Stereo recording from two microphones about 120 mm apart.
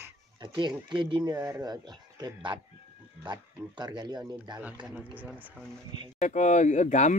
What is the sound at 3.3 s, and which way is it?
Speech, 40° right (ahead or behind).